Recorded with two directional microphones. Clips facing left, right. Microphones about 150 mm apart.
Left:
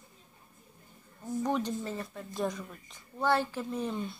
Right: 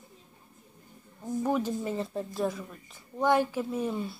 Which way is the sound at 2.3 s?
Centre (ahead or behind).